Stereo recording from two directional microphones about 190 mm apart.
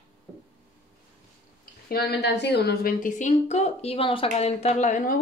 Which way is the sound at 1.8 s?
55° left (ahead or behind).